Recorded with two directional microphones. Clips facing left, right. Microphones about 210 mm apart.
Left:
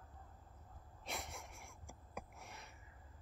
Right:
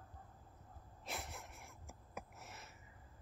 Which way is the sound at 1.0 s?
Centre (ahead or behind).